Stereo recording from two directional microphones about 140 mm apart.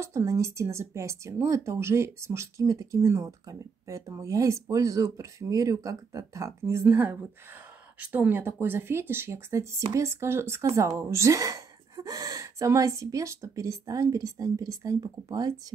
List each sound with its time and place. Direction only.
0.0 s speech: 20° right (ahead or behind)